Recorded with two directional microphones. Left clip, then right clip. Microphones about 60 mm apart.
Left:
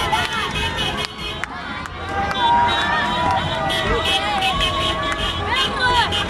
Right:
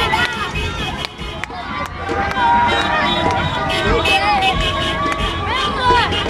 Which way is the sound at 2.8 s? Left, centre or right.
Centre.